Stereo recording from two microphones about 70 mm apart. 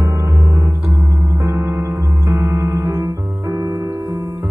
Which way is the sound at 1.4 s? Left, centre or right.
Right.